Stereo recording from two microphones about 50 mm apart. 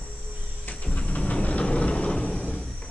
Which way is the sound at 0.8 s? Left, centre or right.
Left.